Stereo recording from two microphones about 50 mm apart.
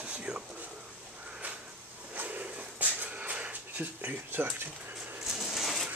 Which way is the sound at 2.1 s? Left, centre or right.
Right.